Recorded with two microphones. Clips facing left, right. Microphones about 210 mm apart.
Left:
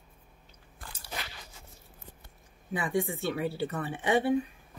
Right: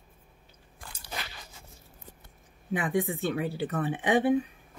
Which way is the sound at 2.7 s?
20° right (ahead or behind).